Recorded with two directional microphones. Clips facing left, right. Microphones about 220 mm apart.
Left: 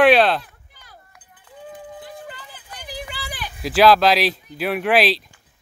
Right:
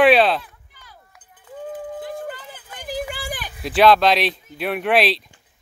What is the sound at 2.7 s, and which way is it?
Vehicle, 50° right (ahead or behind).